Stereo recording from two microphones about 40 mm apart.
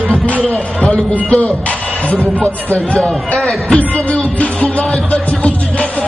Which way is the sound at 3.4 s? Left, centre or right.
Centre.